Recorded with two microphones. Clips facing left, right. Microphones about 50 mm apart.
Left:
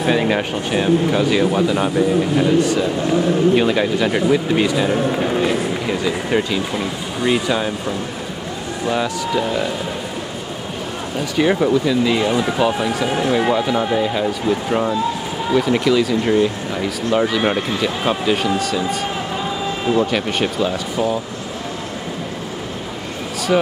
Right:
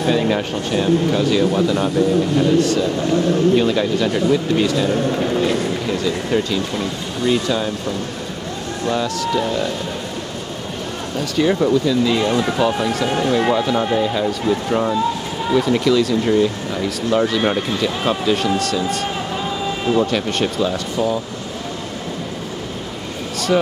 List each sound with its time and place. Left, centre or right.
0.0 s speech: left
8.8 s speech: centre
11.1 s speech: centre
23.3 s a sound: centre